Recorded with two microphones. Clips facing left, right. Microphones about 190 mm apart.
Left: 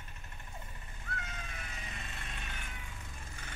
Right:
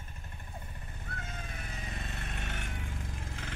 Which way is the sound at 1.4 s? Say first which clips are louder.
Right 4 dB; 35° right (ahead or behind).